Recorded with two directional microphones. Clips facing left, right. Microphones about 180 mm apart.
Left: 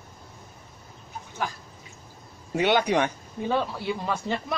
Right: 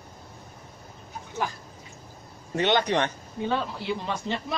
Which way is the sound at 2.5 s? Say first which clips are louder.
Left 1 dB; 10° left (ahead or behind).